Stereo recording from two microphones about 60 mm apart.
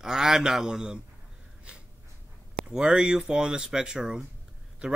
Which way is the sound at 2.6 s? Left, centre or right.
Centre.